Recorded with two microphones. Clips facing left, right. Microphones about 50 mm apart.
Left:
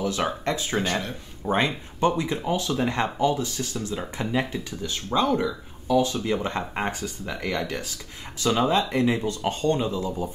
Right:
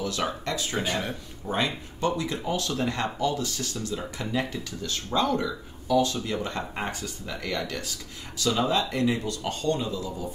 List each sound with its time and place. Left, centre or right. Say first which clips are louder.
0.0 s speech: left 3 dB; left
0.7 s speech: even; centre
1.4 s speech: left 4 dB; left